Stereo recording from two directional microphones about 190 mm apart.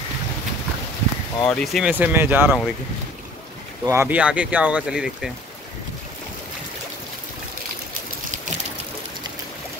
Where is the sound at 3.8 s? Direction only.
10° right (ahead or behind).